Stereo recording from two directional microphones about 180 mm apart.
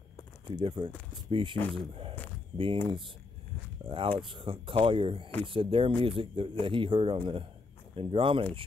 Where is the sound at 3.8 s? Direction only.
30° right (ahead or behind).